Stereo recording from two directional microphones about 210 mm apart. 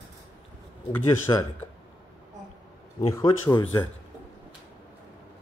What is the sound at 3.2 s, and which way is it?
Speech, 15° left (ahead or behind).